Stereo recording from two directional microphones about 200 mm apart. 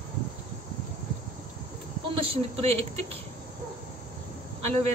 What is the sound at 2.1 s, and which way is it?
Speech, 30° right (ahead or behind).